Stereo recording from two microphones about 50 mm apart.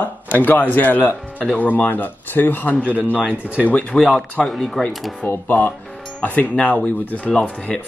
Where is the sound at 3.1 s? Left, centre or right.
Right.